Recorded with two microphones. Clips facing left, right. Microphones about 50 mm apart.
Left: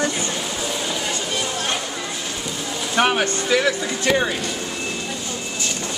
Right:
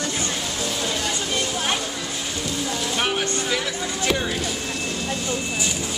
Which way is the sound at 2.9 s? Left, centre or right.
Left.